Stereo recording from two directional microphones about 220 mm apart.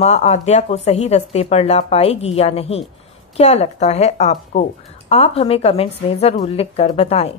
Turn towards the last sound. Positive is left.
turn(degrees=25)  # may be behind; listen again after turning